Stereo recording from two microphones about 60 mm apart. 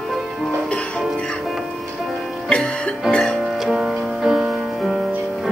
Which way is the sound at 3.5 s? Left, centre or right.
Centre.